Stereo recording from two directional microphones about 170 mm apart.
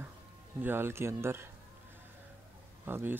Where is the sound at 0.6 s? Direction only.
15° right (ahead or behind).